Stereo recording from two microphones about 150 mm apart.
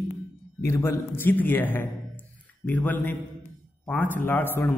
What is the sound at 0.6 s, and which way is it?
A man's voice, 20° left (ahead or behind).